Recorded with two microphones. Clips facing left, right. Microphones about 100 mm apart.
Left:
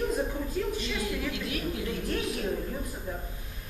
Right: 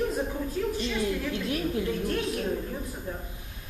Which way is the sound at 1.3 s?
35° right (ahead or behind).